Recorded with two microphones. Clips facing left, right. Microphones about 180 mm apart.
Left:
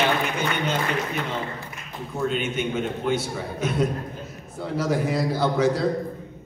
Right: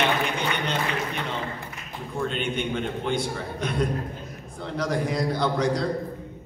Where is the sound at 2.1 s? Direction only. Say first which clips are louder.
Left 2 dB; 5° left (ahead or behind).